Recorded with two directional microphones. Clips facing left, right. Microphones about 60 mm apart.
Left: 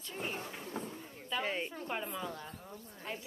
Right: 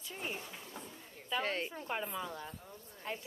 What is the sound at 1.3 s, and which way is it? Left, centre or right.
Speech, centre.